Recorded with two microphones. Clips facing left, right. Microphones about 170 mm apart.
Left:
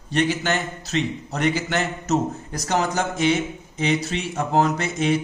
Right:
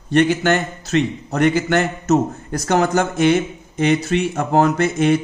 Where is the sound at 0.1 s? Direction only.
55° right (ahead or behind).